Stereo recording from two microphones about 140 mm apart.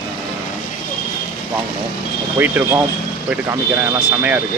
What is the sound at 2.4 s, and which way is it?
Speech, 15° right (ahead or behind).